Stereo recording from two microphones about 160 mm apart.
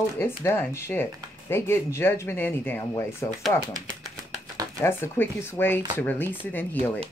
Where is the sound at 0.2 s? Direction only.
15° left (ahead or behind).